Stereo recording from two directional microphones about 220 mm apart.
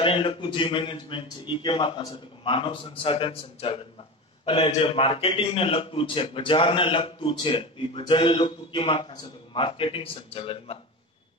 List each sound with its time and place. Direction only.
0.0 s a man's voice: 25° left (ahead or behind)